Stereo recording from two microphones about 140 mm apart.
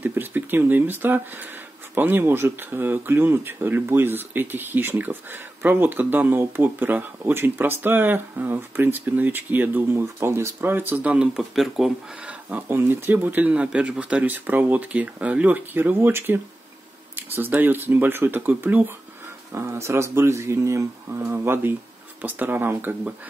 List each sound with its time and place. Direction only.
0.0 s speech: 15° right (ahead or behind)